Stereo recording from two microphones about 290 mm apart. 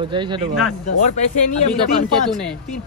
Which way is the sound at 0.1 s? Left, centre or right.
Centre.